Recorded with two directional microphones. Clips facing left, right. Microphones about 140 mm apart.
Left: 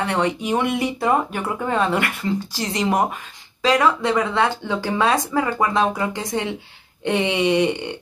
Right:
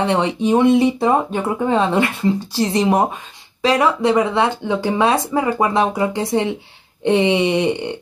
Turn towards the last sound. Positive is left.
turn(degrees=-20)  # may be behind; listen again after turning